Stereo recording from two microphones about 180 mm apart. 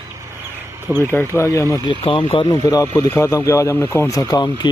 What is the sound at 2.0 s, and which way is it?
Speech, 30° left (ahead or behind).